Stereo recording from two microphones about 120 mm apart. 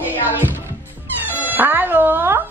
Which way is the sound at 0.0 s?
15° right (ahead or behind).